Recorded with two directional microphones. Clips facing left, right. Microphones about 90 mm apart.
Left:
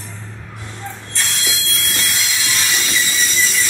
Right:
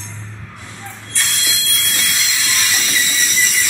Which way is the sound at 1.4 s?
35° left (ahead or behind).